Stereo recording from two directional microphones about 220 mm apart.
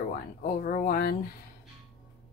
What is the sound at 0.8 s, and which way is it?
Speech, 40° left (ahead or behind).